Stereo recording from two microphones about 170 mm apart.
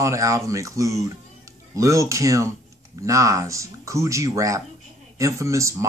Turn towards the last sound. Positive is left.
turn(degrees=-20)  # may be behind; listen again after turning